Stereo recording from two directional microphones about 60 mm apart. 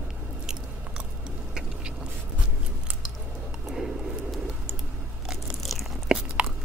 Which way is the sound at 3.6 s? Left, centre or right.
Centre.